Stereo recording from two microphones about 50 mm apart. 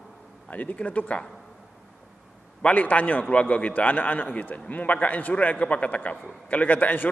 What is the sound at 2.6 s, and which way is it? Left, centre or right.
A man's voice, left.